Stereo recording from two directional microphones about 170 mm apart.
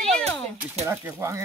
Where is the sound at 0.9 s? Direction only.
15° right (ahead or behind).